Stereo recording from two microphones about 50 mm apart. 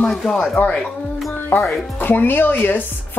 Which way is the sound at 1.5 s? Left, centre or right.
Left.